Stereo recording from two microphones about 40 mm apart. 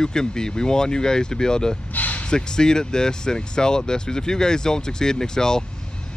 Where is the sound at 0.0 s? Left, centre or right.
Centre.